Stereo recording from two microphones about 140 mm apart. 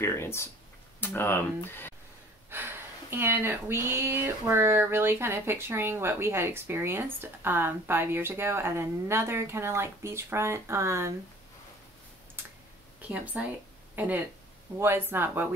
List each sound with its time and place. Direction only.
0.0 s speech: 20° left (ahead or behind)
2.5 s speech: 15° right (ahead or behind)
12.4 s a sound: 15° right (ahead or behind)
13.1 s speech: 10° right (ahead or behind)